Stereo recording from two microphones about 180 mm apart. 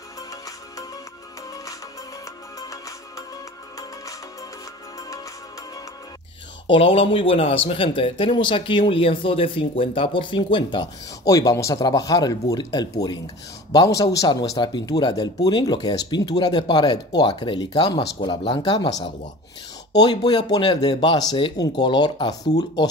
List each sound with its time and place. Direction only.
0.3 s music: 20° left (ahead or behind)
6.7 s speech: 30° left (ahead or behind)
20.0 s speech: 25° left (ahead or behind)